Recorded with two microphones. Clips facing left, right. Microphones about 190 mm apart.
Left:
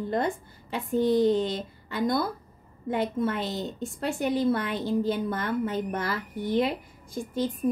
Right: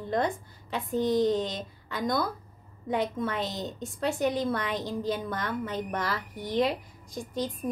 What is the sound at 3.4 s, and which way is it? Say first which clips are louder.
Speech: left 3 dB; 60° left (ahead or behind).